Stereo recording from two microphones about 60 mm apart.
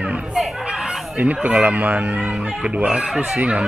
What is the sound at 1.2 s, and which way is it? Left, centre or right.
Speech, right.